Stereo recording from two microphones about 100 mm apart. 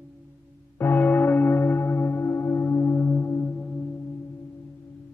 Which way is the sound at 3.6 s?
10° left (ahead or behind).